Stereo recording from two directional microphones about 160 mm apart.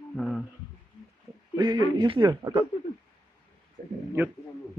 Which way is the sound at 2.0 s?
30° right (ahead or behind).